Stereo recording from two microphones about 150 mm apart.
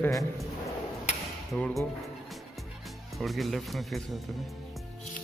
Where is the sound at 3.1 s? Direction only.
Centre (ahead or behind).